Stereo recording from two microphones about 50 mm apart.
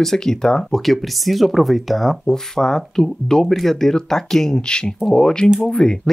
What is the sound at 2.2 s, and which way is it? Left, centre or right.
Speech, centre.